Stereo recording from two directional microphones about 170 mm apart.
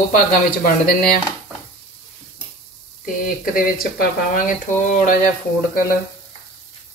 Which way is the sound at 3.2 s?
55° left (ahead or behind).